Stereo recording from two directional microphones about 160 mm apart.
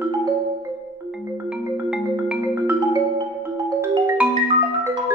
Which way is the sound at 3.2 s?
25° right (ahead or behind).